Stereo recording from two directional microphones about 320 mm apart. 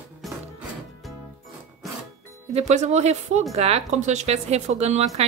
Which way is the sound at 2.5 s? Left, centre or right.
Right.